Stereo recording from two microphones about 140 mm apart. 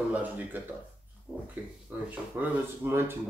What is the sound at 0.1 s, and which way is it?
Speech, 10° right (ahead or behind).